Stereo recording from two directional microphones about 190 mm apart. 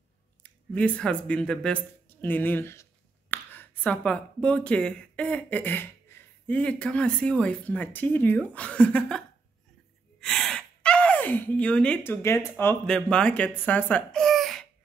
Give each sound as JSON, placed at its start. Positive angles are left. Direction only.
{"t": 0.4, "sound": "speech", "side_deg": 5}
{"t": 10.2, "sound": "speech", "side_deg": 5}